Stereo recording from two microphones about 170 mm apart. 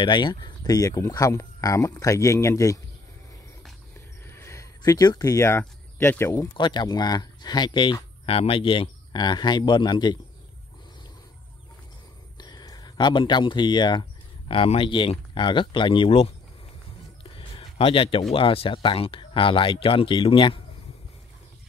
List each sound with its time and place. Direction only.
0.0 s speech: 25° left (ahead or behind)
4.3 s speech: 15° left (ahead or behind)
6.5 s speech: 25° left (ahead or behind)
12.4 s speech: 25° left (ahead or behind)
17.2 s a sound: 30° left (ahead or behind)
18.3 s speech: 35° left (ahead or behind)